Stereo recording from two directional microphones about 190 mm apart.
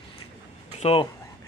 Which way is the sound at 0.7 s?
30° left (ahead or behind).